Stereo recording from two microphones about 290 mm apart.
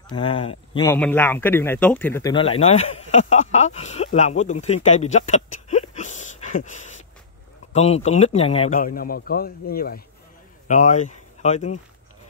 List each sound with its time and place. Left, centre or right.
0.1 s a man's voice: centre